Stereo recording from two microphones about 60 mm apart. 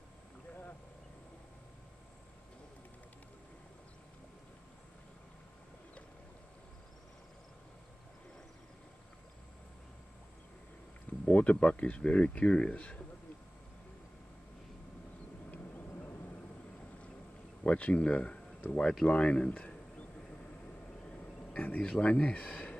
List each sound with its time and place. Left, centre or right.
11.2 s speech: left
17.6 s speech: left
21.5 s speech: left